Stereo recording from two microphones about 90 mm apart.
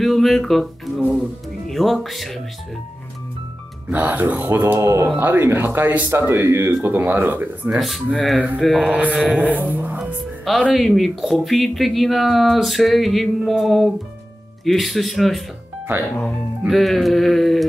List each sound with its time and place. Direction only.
0.0 s music: centre (ahead or behind)
1.7 s speech: centre (ahead or behind)
3.9 s speech: 20° right (ahead or behind)
7.7 s speech: centre (ahead or behind)
8.9 s speech: 15° right (ahead or behind)
10.6 s speech: centre (ahead or behind)
16.6 s speech: centre (ahead or behind)